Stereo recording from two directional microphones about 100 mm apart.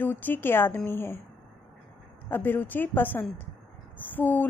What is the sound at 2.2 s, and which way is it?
A woman's voice, 20° left (ahead or behind).